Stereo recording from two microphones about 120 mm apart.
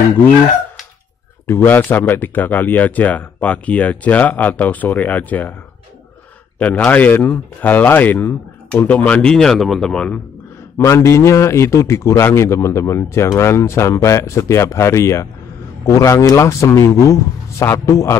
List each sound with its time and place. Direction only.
1.5 s speech: 15° left (ahead or behind)
6.6 s speech: 10° left (ahead or behind)
10.8 s a man's voice: 25° left (ahead or behind)